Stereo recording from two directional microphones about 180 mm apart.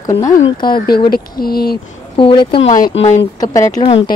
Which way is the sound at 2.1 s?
30° left (ahead or behind).